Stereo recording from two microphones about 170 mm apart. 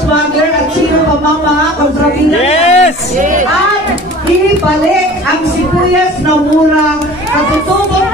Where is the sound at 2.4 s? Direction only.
40° left (ahead or behind).